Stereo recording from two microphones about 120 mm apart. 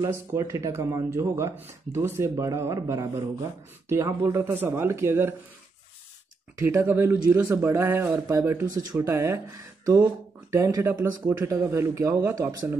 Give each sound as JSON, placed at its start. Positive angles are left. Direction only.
{"t": 0.0, "sound": "a man's voice", "side_deg": -25}
{"t": 6.6, "sound": "a man's voice", "side_deg": -25}